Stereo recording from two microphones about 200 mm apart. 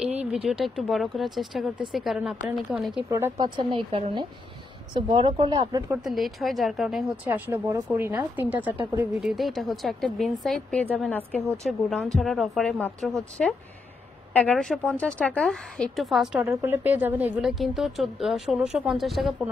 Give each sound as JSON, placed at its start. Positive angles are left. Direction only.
{"t": 0.5, "sound": "a woman's voice", "side_deg": 0}
{"t": 3.1, "sound": "a woman's voice", "side_deg": -15}
{"t": 5.9, "sound": "a woman's voice", "side_deg": 0}